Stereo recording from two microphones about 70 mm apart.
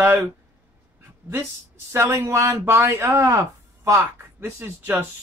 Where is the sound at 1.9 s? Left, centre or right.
Right.